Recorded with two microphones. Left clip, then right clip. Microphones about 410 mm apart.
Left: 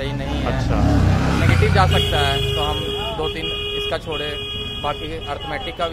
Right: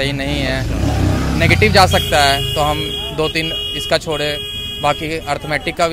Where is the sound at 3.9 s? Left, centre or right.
Right.